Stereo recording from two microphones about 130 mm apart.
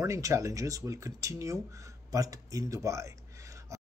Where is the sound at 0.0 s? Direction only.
25° right (ahead or behind).